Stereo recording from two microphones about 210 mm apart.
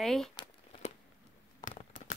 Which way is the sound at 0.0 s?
Centre (ahead or behind).